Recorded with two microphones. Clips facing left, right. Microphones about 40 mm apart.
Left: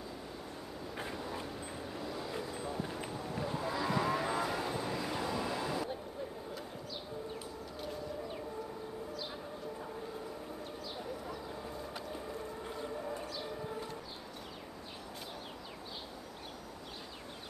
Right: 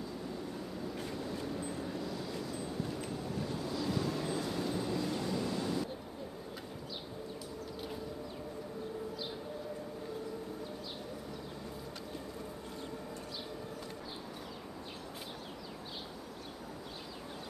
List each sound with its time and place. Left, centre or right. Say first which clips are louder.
0.9 s vehicle: left 3 dB; centre
4.7 s vehicle: right 1 dB; centre